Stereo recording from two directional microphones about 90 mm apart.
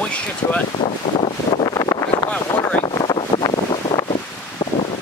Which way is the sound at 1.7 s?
45° left (ahead or behind).